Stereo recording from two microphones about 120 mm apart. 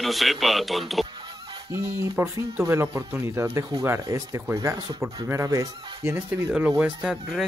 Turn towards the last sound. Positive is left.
turn(degrees=-5)  # may be behind; listen again after turning